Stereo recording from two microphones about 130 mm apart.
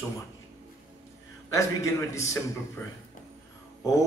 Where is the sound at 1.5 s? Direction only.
25° left (ahead or behind).